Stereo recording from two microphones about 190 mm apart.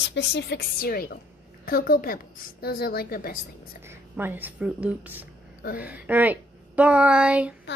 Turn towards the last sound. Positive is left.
turn(degrees=-5)  # may be behind; listen again after turning